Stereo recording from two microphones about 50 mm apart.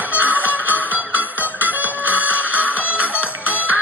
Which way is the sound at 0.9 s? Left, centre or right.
Right.